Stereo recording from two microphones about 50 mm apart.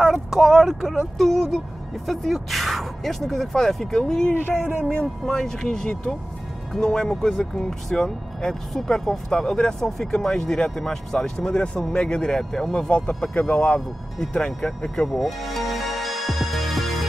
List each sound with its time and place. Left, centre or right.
0.0 s speech: centre
0.8 s speech: centre; by 13.7 s left
13.7 s speech: centre
14.3 s speech: centre
15.0 s music: centre